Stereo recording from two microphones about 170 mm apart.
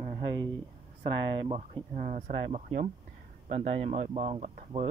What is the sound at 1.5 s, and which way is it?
Speech, 45° right (ahead or behind).